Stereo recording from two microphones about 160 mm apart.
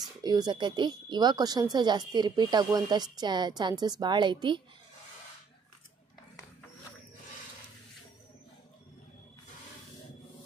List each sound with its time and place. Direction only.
0.0 s speech: 25° right (ahead or behind)